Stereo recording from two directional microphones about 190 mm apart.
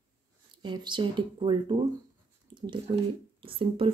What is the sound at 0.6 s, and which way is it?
Speech, 25° right (ahead or behind).